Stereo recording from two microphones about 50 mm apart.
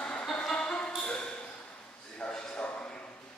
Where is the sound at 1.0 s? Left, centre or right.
Left.